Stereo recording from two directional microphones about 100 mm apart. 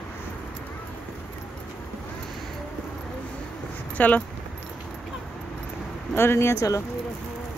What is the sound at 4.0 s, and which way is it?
Speech, 15° left (ahead or behind).